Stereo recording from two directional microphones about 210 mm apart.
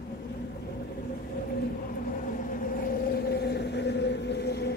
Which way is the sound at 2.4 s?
40° left (ahead or behind).